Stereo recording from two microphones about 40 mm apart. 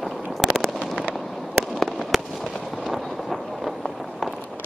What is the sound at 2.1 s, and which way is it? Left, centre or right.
Fireworks, centre.